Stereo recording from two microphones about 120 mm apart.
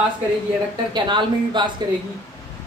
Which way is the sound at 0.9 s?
40° right (ahead or behind).